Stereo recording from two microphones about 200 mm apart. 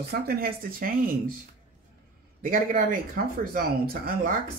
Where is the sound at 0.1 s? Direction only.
50° right (ahead or behind).